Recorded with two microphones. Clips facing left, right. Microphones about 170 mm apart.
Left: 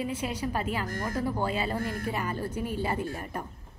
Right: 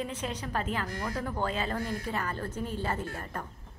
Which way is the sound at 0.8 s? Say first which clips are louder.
Left 2 dB; 45° left (ahead or behind).